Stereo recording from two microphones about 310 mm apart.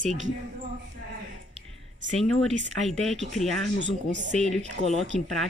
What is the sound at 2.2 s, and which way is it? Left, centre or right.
Speech, centre.